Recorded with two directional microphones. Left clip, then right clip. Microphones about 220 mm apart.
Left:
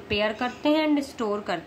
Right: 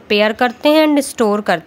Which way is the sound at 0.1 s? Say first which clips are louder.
Right 12 dB; 45° right (ahead or behind).